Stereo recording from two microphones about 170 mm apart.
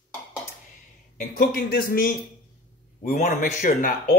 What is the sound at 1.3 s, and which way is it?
Speech, 55° left (ahead or behind).